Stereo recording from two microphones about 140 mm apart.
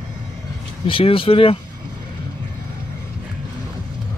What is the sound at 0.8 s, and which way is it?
Speech, 40° left (ahead or behind).